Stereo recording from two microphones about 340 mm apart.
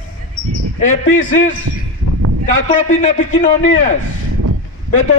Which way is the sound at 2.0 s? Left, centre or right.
Left.